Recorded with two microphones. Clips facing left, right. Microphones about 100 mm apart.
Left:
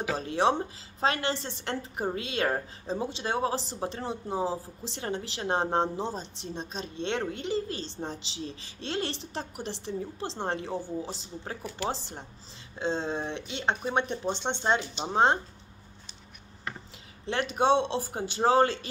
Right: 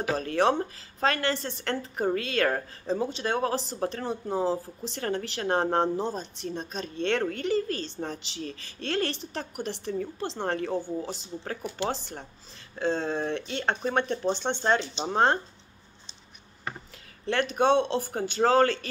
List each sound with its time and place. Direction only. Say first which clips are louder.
0.2 s speech: right 1 dB; 20° left (ahead or behind)
11.9 s speech: right 2 dB; 20° left (ahead or behind)
17.3 s speech: right 1 dB; 20° left (ahead or behind)